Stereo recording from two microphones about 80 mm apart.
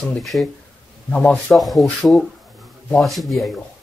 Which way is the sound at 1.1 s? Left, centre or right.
Centre.